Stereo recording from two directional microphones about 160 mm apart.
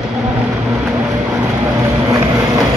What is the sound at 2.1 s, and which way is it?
Vehicle, 20° right (ahead or behind).